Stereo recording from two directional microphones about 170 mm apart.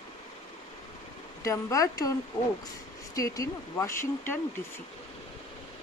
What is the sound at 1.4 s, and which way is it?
Speech, 20° left (ahead or behind).